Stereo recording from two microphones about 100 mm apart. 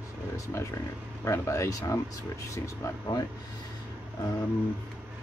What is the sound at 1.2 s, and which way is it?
Speech, 30° left (ahead or behind).